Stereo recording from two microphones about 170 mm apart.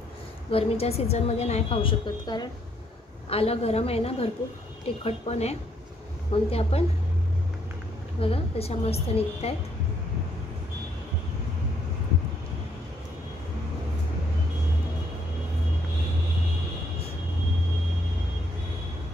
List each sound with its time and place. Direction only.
0.5 s a woman's voice: 35° left (ahead or behind)
8.2 s a woman's voice: 35° left (ahead or behind)